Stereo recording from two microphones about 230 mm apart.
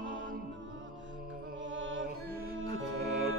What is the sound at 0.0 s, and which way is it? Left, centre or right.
Music, right.